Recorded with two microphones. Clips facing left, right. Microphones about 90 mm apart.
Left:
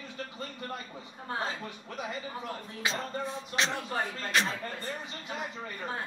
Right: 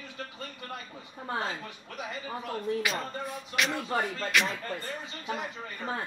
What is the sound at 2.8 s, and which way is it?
A man's voice, 30° left (ahead or behind).